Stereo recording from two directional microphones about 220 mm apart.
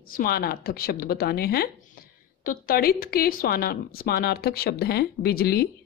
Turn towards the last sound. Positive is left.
turn(degrees=45)  # may be behind; listen again after turning